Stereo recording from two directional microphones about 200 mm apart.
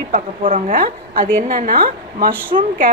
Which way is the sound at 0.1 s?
40° right (ahead or behind).